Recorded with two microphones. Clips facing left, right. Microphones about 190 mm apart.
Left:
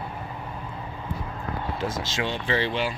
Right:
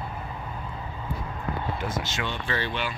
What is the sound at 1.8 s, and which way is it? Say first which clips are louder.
Speech: left 2 dB; 25° left (ahead or behind).